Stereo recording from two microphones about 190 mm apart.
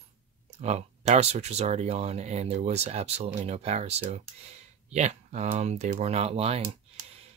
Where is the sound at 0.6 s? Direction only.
35° right (ahead or behind).